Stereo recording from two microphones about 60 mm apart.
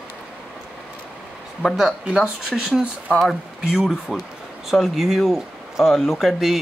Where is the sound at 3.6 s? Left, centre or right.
Centre.